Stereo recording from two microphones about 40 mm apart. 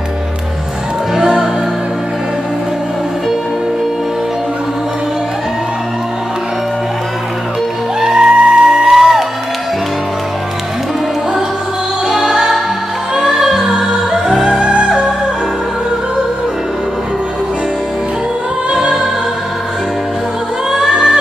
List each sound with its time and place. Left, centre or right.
1.1 s music: centre
8.0 s music: centre
12.1 s music: centre
18.7 s music: right
20.7 s music: centre